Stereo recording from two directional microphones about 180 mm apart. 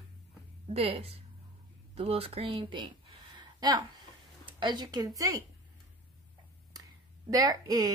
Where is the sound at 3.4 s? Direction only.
20° right (ahead or behind).